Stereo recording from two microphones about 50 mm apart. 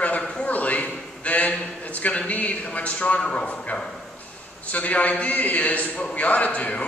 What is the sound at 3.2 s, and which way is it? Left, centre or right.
A man's voice, centre.